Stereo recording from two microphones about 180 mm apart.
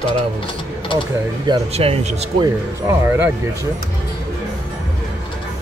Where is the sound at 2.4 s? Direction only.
15° right (ahead or behind).